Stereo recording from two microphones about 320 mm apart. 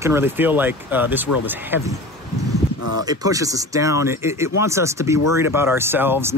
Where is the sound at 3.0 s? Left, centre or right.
Centre.